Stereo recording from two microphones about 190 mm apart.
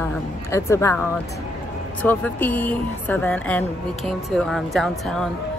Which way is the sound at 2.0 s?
10° left (ahead or behind).